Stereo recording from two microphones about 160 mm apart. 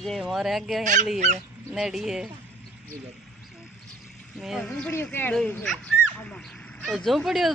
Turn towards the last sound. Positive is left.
turn(degrees=0)  # may be behind; listen again after turning